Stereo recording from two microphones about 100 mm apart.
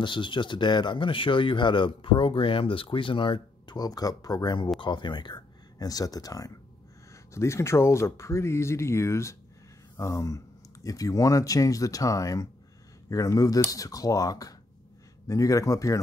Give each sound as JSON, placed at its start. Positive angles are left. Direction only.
{"t": 0.0, "sound": "speech", "side_deg": 55}
{"t": 4.7, "sound": "speech", "side_deg": 50}